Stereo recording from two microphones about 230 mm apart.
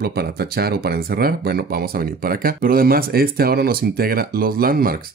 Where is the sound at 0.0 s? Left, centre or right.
Right.